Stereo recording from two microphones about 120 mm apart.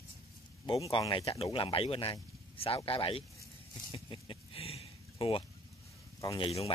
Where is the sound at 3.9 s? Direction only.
45° left (ahead or behind).